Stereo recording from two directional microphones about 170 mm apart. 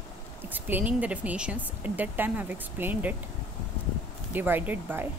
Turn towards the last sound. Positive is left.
turn(degrees=-10)  # may be behind; listen again after turning